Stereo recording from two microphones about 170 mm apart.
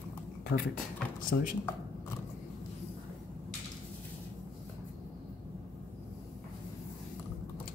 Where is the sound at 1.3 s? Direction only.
90° left.